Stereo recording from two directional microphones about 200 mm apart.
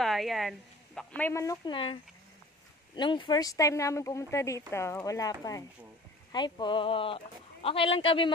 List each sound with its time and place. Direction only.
0.0 s speech: centre (ahead or behind); by 2.0 s 25° left (ahead or behind)
3.0 s speech: 25° left (ahead or behind)